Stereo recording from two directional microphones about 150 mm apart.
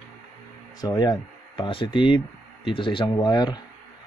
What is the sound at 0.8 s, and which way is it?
Speech, 25° left (ahead or behind).